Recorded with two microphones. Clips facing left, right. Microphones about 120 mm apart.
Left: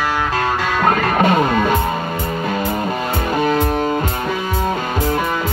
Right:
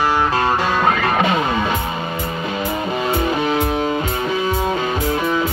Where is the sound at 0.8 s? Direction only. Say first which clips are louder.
Left 6 dB; 45° left (ahead or behind).